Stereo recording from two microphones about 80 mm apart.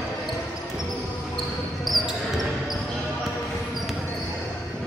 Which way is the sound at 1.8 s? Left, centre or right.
Centre.